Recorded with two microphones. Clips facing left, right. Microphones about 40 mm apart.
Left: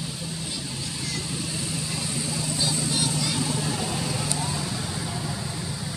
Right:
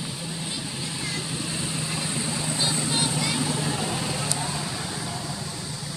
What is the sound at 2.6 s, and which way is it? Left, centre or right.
Vehicle, right.